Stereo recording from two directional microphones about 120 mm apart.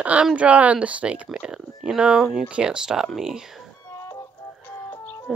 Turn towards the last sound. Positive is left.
turn(degrees=20)  # may be behind; listen again after turning